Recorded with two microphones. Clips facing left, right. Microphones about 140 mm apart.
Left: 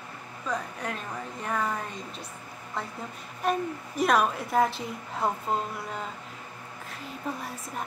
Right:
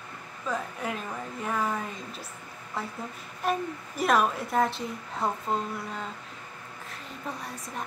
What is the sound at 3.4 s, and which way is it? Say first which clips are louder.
A woman's voice: left 1 dB; centre (ahead or behind).